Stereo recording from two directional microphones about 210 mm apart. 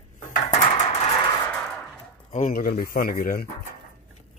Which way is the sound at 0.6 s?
30° left (ahead or behind).